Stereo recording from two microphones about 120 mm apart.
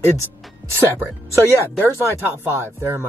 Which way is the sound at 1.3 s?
20° left (ahead or behind).